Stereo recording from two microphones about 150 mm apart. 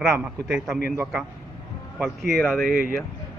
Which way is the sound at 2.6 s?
80° right.